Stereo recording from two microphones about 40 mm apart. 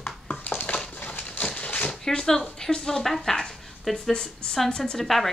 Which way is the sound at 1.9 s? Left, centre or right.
Centre.